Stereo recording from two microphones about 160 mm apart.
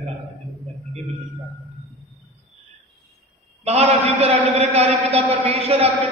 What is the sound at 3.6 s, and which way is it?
A man's voice, 40° right (ahead or behind).